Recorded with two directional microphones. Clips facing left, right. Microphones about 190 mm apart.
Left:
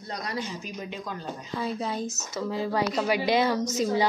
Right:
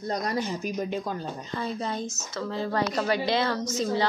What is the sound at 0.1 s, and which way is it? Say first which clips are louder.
Speech: right 4 dB; 45° right (ahead or behind).